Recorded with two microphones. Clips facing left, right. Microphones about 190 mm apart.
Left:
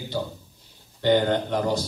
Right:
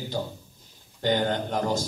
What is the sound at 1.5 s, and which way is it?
Speech, 45° right (ahead or behind).